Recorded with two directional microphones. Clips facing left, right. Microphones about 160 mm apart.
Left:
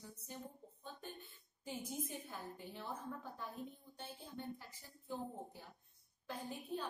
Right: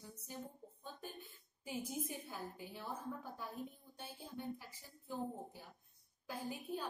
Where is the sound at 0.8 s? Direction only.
10° right (ahead or behind).